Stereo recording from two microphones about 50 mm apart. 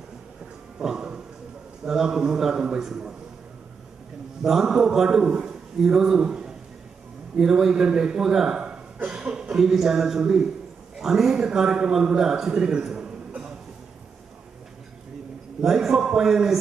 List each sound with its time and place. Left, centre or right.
0.7 s dog: centre
1.9 s a man's voice: centre
4.4 s a man's voice: centre
12.8 s a sound: centre
15.6 s a man's voice: centre